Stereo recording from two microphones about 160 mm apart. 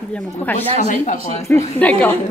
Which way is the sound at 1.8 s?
10° left (ahead or behind).